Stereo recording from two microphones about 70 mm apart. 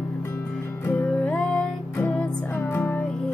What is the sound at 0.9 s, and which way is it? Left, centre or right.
Music, left.